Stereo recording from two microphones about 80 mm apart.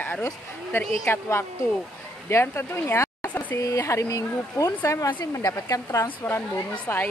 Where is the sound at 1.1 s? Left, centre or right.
Left.